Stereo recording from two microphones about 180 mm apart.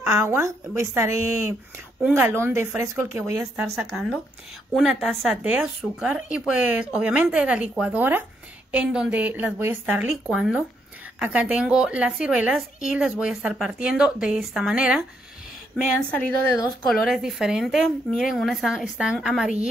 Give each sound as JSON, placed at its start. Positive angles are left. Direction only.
{"t": 0.0, "sound": "speech", "side_deg": -15}
{"t": 3.7, "sound": "a woman's voice", "side_deg": 0}